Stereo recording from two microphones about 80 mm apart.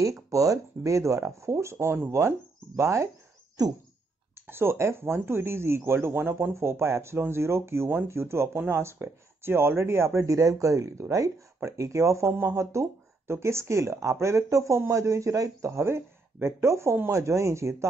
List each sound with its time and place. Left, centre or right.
0.3 s speech: right
4.5 s speech: right